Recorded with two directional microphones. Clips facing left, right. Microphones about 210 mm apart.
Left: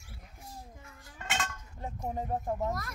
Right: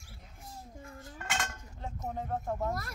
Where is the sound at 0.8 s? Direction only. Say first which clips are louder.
Right 7 dB; 35° right (ahead or behind).